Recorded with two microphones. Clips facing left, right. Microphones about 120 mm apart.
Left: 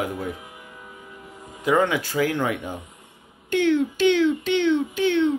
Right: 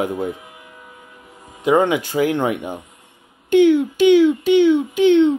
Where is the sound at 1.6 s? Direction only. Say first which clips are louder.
Right 5 dB; 20° right (ahead or behind).